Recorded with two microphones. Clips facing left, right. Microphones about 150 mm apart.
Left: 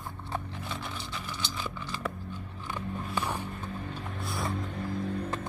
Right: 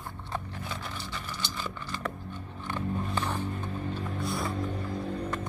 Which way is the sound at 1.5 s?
Centre (ahead or behind).